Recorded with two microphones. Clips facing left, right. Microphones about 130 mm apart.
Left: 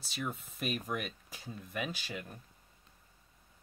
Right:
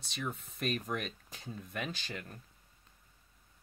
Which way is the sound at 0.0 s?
5° left (ahead or behind).